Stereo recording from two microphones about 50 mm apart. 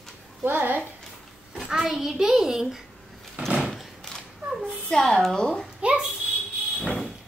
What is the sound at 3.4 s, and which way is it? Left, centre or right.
Door, right.